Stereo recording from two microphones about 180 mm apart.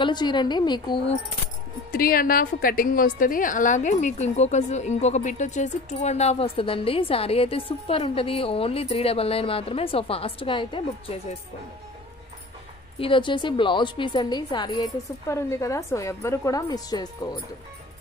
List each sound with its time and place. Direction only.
0.0 s a woman's voice: 25° left (ahead or behind)
1.9 s a woman's voice: 55° left (ahead or behind); by 11.1 s 30° left (ahead or behind)
13.0 s a woman's voice: 25° left (ahead or behind)